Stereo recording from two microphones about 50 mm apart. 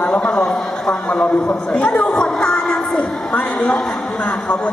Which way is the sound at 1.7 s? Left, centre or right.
Left.